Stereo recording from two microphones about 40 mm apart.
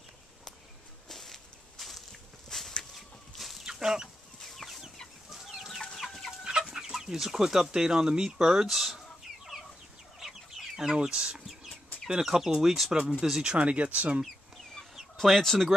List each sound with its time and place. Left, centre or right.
1.0 s walk: centre
2.5 s chicken: centre
3.3 s a sound: centre
3.6 s chicken: centre
4.4 s chicken: centre
5.9 s chicken: centre
6.4 s chicken: right
6.7 s chicken: centre
7.7 s speech: centre
8.6 s chicken: centre
10.2 s chicken: centre
11.0 s speech: centre
13.2 s speech: centre; by 14.2 s right
15.2 s speech: centre